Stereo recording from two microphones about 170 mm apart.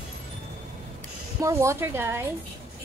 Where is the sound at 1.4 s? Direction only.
15° right (ahead or behind).